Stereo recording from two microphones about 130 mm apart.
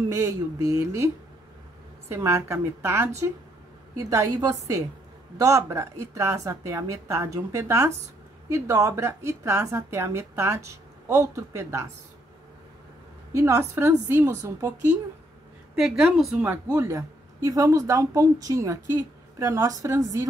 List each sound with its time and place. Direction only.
0.1 s a woman's voice: 25° right (ahead or behind)
13.3 s a woman's voice: 25° right (ahead or behind)
15.7 s a woman's voice: 5° right (ahead or behind)
16.7 s a woman's voice: 20° right (ahead or behind)